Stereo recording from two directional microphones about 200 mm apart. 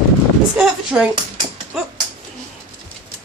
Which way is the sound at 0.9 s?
10° right (ahead or behind).